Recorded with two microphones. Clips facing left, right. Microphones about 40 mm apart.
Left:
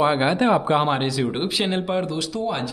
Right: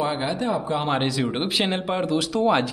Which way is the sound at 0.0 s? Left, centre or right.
Left.